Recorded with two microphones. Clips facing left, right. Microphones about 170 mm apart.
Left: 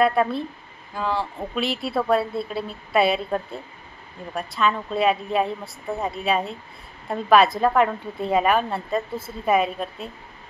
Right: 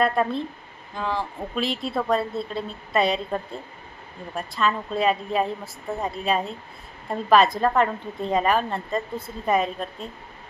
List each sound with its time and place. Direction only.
0.0 s a woman's voice: 5° left (ahead or behind)